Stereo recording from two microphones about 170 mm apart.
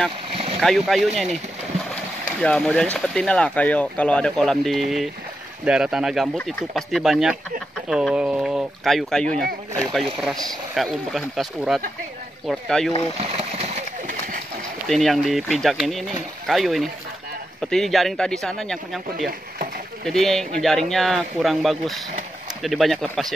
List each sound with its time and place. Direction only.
0.3 s vehicle: 35° right (ahead or behind)
0.6 s speech: centre (ahead or behind)
2.4 s speech: 5° left (ahead or behind)
13.2 s a sound: 35° right (ahead or behind)
14.9 s speech: centre (ahead or behind)